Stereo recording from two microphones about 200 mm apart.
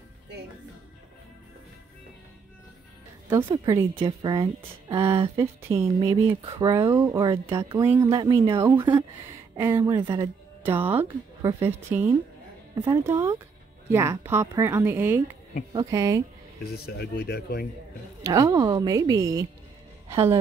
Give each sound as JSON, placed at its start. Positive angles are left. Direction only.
{"t": 3.3, "sound": "speech", "side_deg": -20}
{"t": 5.4, "sound": "a woman's voice", "side_deg": -15}
{"t": 6.4, "sound": "speech", "side_deg": -30}
{"t": 6.7, "sound": "a woman's voice", "side_deg": -15}
{"t": 8.6, "sound": "a woman's voice", "side_deg": -10}
{"t": 10.6, "sound": "a woman's voice", "side_deg": -10}
{"t": 12.7, "sound": "speech", "side_deg": -25}
{"t": 13.0, "sound": "a woman's voice", "side_deg": -10}
{"t": 16.7, "sound": "speech", "side_deg": 55}
{"t": 18.2, "sound": "a woman's voice", "side_deg": -15}